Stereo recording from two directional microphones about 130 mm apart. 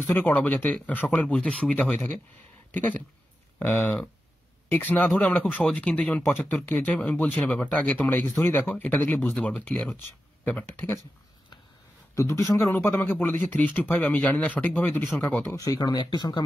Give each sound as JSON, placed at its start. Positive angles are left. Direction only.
{"t": 0.0, "sound": "speech", "side_deg": 15}
{"t": 3.5, "sound": "speech", "side_deg": 15}
{"t": 12.2, "sound": "speech", "side_deg": 20}
{"t": 15.5, "sound": "speech", "side_deg": 30}